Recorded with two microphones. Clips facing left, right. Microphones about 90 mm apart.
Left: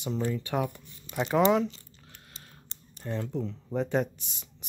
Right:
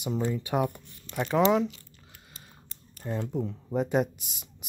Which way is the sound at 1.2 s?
Centre (ahead or behind).